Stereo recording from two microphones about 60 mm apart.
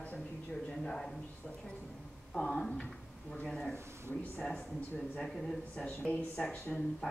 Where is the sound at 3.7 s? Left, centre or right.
Right.